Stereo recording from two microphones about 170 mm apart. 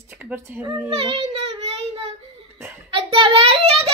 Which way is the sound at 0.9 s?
35° right (ahead or behind).